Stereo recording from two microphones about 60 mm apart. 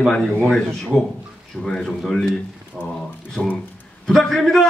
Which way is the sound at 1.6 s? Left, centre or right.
Centre.